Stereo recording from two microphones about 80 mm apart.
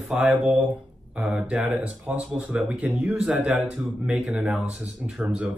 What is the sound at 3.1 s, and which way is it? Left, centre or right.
Speech, centre.